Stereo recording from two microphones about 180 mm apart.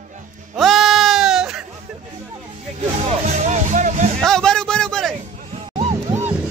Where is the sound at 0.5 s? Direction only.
Centre (ahead or behind).